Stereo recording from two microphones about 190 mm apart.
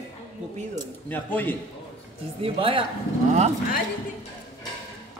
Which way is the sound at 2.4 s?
30° right (ahead or behind).